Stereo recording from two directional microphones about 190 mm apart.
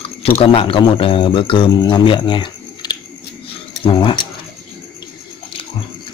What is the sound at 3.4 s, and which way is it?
Keys jangling, 25° left (ahead or behind).